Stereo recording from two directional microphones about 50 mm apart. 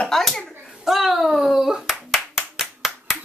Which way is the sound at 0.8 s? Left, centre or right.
Centre.